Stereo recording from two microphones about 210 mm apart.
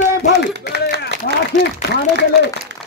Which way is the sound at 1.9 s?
55° left (ahead or behind).